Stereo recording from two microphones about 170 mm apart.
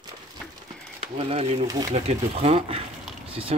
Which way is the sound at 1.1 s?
35° right (ahead or behind).